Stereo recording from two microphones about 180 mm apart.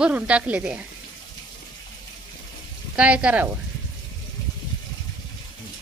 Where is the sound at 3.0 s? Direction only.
5° right (ahead or behind).